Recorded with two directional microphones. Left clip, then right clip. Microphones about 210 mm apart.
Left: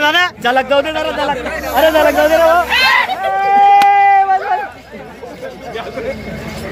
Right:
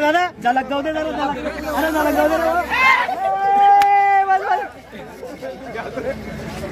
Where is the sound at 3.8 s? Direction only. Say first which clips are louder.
Left 5 dB; 25° right (ahead or behind).